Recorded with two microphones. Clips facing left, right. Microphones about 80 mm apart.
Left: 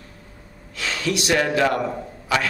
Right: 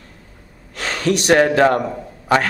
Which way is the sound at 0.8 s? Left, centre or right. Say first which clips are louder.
Right 5 dB; right.